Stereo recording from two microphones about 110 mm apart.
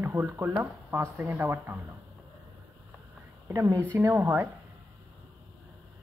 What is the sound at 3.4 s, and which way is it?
Speech, 25° right (ahead or behind).